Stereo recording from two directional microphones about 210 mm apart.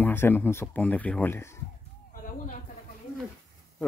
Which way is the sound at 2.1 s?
40° left (ahead or behind).